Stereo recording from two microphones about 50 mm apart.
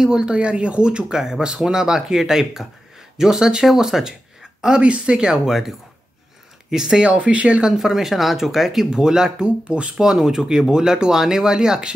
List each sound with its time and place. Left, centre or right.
0.0 s speech: centre
5.5 s speech: centre
7.1 s speech: right
7.7 s speech: centre
9.7 s speech: right
9.9 s speech: centre